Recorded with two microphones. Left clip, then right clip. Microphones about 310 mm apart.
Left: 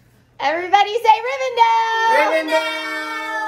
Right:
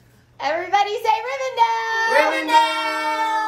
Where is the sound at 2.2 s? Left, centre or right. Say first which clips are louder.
Right 1 dB; centre.